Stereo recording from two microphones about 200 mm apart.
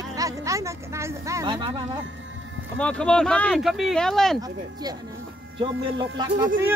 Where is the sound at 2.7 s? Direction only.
5° left (ahead or behind).